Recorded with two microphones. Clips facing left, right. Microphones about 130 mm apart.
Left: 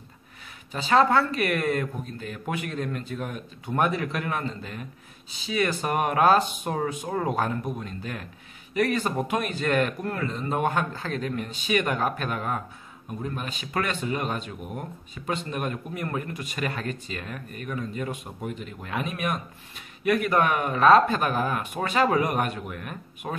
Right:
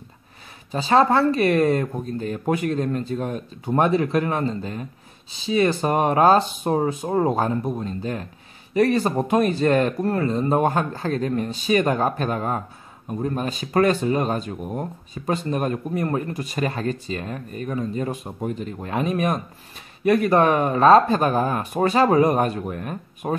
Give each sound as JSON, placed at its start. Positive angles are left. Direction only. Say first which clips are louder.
{"t": 0.7, "sound": "speech", "louder": "right 3 dB", "side_deg": -30}